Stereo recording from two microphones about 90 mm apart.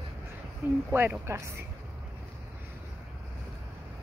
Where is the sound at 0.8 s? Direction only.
25° right (ahead or behind).